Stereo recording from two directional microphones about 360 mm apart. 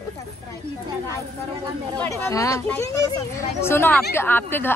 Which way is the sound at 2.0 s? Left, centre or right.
Centre.